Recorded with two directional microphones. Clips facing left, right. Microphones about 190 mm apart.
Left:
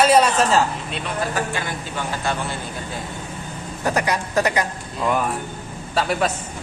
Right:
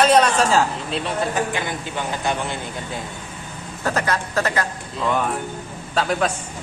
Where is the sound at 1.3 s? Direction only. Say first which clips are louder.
Right 2 dB; 20° right (ahead or behind).